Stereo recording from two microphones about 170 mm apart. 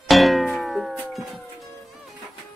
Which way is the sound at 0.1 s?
Centre (ahead or behind).